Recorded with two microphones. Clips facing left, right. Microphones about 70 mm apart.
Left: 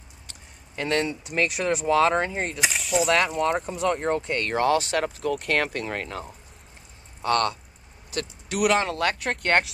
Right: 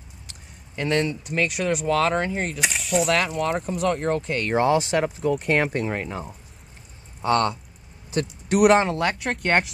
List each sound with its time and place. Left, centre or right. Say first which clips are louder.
0.3 s a sound: right 1 dB; centre
1.0 s speech: right 1 dB; centre
4.5 s speech: right 3 dB; right
8.5 s speech: right 6 dB; right
8.8 s speech: right 1 dB; centre